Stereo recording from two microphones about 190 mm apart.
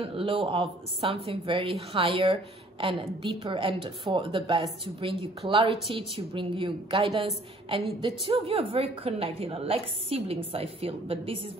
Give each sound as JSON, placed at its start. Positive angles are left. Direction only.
{"t": 0.0, "sound": "a woman's voice", "side_deg": -30}